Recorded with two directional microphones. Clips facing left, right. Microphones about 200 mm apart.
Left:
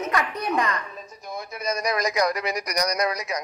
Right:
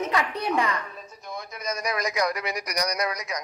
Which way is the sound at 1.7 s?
35° left (ahead or behind).